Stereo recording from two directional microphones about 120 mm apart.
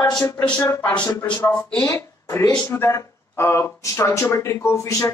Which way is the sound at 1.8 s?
25° left (ahead or behind).